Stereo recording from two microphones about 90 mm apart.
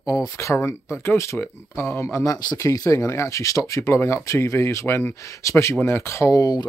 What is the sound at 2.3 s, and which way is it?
Speech, 45° left (ahead or behind).